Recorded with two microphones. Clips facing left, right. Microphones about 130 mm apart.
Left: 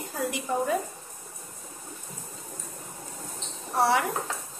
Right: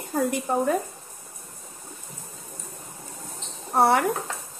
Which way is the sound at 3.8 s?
55° right (ahead or behind).